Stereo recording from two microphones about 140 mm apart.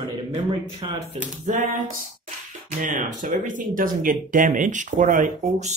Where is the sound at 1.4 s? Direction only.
65° right (ahead or behind).